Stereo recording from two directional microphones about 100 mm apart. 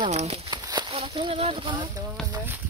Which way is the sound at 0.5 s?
45° right (ahead or behind).